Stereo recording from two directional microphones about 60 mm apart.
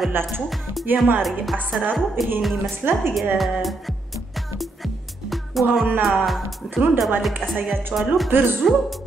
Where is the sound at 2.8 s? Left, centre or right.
Right.